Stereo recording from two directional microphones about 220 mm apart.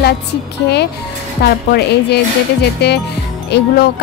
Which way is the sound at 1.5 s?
50° left (ahead or behind).